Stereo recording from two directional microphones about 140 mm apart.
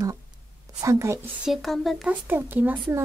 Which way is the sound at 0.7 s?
20° right (ahead or behind).